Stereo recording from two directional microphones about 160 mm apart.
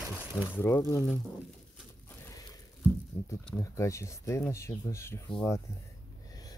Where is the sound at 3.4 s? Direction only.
15° left (ahead or behind).